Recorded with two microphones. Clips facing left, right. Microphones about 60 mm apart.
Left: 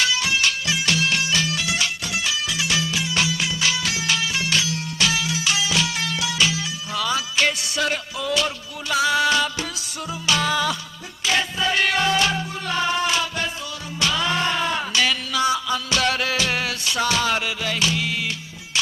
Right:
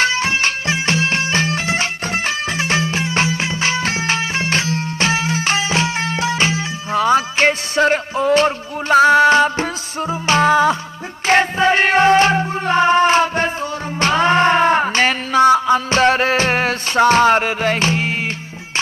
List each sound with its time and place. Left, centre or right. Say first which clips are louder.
0.0 s music: right 5 dB; right